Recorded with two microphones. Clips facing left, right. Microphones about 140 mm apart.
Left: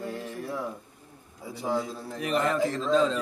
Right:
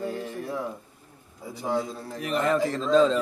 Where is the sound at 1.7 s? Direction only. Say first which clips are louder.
Right 1 dB; centre (ahead or behind).